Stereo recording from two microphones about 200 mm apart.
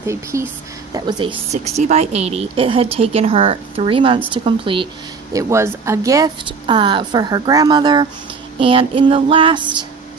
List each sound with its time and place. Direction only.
0.0 s a woman's voice: 15° right (ahead or behind)
1.5 s a woman's voice: 35° right (ahead or behind)
5.3 s a woman's voice: 15° right (ahead or behind)